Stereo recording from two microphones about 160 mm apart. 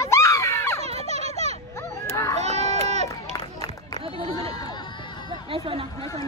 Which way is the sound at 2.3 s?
45° right (ahead or behind).